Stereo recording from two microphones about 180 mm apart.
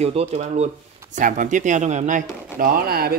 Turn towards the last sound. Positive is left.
turn(degrees=-55)  # may be behind; listen again after turning